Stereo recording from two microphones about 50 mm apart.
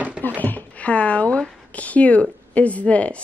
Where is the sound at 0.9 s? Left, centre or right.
Left.